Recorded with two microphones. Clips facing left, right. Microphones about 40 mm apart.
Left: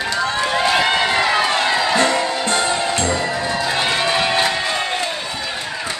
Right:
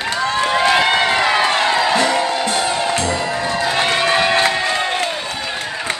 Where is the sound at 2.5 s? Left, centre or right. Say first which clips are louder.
Even; left.